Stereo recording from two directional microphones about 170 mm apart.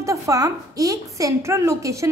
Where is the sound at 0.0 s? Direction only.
20° right (ahead or behind).